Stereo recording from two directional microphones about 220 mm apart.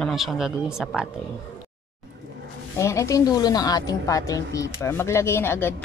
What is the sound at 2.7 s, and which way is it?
A woman's voice, 15° left (ahead or behind).